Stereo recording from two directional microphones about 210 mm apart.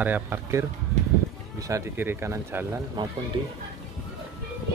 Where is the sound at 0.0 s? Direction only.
10° right (ahead or behind).